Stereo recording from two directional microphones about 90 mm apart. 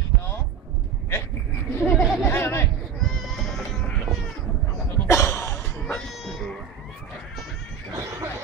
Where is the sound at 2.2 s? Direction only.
25° left (ahead or behind).